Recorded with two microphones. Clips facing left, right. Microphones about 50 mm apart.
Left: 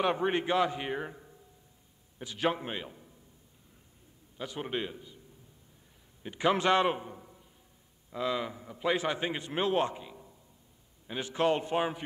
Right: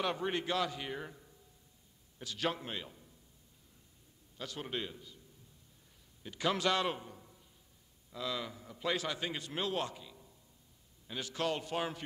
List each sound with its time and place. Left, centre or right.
0.0 s a man's voice: left
4.4 s a man's voice: left
6.2 s a man's voice: left